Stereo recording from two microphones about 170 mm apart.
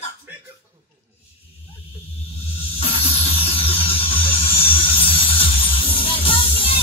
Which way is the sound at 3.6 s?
35° left (ahead or behind).